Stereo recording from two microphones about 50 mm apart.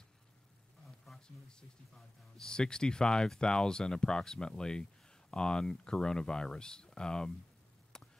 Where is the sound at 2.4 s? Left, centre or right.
Centre.